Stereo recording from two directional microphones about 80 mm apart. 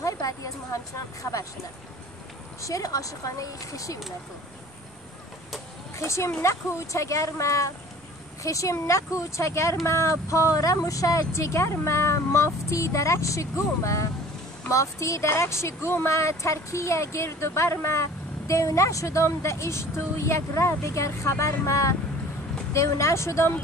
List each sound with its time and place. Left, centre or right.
0.0 s speech: left
2.6 s speech: left
5.9 s speech: left